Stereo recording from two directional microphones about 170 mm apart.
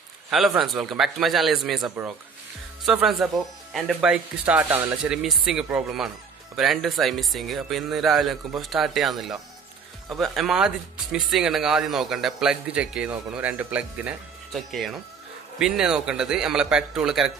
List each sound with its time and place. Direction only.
0.3 s speech: centre (ahead or behind)